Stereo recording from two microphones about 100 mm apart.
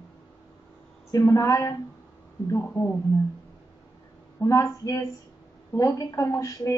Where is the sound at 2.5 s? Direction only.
20° left (ahead or behind).